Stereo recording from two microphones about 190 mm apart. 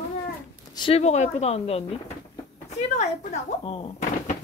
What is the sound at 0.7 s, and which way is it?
Speech, 30° left (ahead or behind).